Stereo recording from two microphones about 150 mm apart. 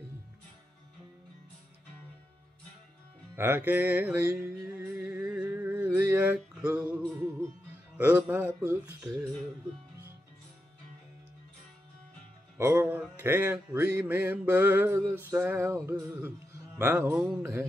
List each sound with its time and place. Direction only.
3.3 s music: 15° right (ahead or behind)
8.0 s music: 15° right (ahead or behind)
9.1 s music: 25° right (ahead or behind)
12.5 s music: 15° right (ahead or behind)
17.2 s music: 5° right (ahead or behind)